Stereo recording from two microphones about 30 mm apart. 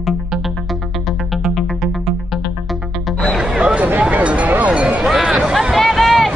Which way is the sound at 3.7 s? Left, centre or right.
Right.